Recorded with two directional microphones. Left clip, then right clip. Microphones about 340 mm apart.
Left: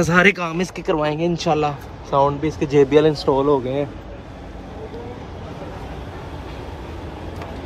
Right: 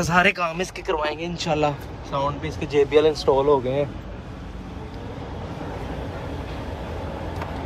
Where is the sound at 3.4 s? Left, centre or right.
Left.